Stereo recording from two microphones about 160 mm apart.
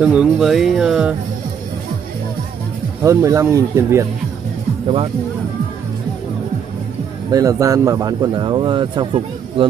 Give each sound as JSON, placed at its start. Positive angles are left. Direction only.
{"t": 0.0, "sound": "speech", "side_deg": -5}
{"t": 3.0, "sound": "speech", "side_deg": -20}
{"t": 7.2, "sound": "speech", "side_deg": -20}